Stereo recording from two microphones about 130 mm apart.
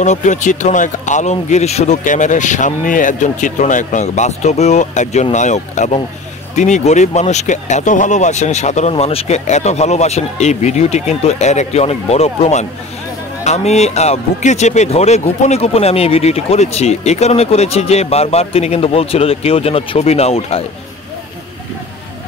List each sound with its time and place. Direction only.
0.0 s speech: 65° left (ahead or behind)
2.0 s speech: 70° left (ahead or behind); by 20.6 s 50° left (ahead or behind)